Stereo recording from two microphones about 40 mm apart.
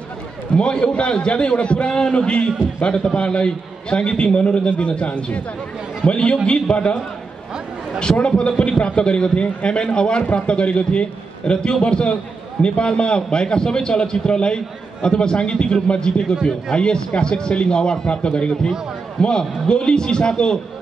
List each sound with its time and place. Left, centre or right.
0.6 s a man's voice: left
8.0 s a man's voice: left